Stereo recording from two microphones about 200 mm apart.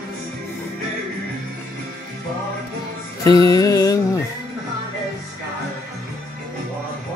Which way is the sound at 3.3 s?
20° left (ahead or behind).